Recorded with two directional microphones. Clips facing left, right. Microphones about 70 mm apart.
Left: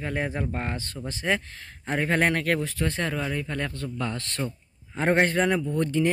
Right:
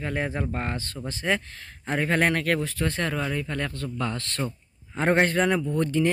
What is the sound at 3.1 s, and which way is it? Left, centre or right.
Speech, centre.